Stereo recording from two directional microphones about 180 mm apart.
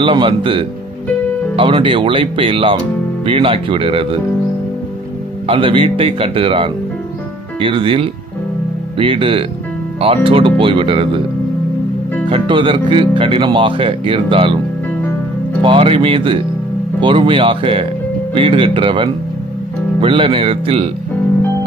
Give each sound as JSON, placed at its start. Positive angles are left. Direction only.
{"t": 0.0, "sound": "speech", "side_deg": -30}
{"t": 5.5, "sound": "speech", "side_deg": -30}
{"t": 12.3, "sound": "speech", "side_deg": -30}
{"t": 15.6, "sound": "speech", "side_deg": -30}